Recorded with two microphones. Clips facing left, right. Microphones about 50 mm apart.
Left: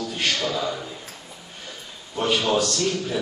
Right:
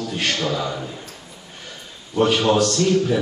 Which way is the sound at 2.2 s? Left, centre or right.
Right.